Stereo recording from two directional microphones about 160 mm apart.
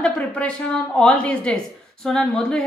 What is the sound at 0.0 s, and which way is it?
A woman's voice, 5° left (ahead or behind).